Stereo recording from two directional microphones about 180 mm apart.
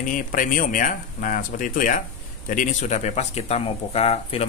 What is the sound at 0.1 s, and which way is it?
Speech, 50° left (ahead or behind).